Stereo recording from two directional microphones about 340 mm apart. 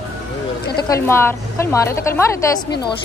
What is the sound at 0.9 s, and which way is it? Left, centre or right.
Speech, centre.